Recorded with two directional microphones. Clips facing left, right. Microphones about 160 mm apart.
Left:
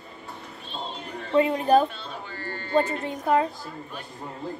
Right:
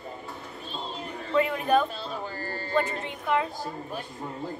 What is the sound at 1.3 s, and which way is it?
Speech, 30° left (ahead or behind).